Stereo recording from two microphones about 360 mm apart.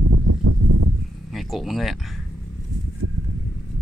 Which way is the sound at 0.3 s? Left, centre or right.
Right.